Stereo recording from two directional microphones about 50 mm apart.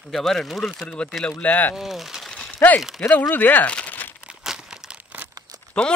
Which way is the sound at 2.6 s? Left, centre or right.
Left.